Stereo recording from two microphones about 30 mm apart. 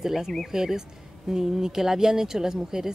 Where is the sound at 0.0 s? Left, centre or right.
Centre.